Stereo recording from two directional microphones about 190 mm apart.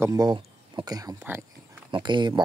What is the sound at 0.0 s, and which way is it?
Speech, 20° right (ahead or behind).